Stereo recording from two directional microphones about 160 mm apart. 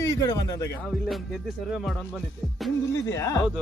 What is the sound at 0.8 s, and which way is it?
Speech, centre (ahead or behind).